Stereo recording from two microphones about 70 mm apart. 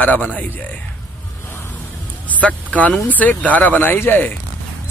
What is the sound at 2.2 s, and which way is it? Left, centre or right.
Speech, left.